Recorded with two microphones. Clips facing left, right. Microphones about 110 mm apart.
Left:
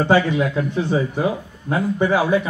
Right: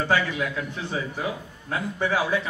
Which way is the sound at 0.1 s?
30° left (ahead or behind).